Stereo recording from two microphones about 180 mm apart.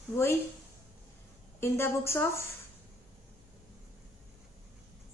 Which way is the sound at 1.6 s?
15° left (ahead or behind).